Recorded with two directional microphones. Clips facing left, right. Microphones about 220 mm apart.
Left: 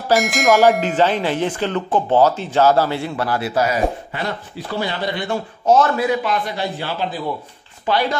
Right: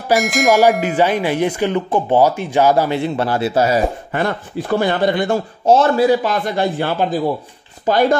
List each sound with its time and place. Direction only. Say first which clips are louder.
0.2 s bell: right 3 dB; centre (ahead or behind)
0.5 s clang: even; 15° right (ahead or behind); by 3.8 s 30° right (ahead or behind)
4.1 s speech: right 6 dB; 50° right (ahead or behind)
5.7 s a man's voice: right 4 dB; 30° right (ahead or behind); by 8.2 s 45° right (ahead or behind)